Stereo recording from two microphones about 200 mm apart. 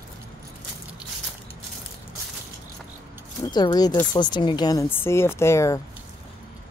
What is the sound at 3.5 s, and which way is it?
Speech, 20° left (ahead or behind).